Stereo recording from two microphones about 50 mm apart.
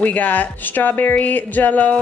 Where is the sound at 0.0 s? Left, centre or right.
Left.